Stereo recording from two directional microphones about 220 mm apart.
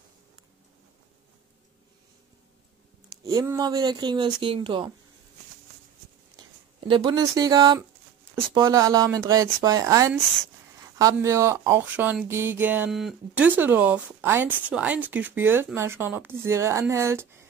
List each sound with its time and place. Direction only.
3.3 s speech: 15° right (ahead or behind)
6.9 s speech: 20° right (ahead or behind)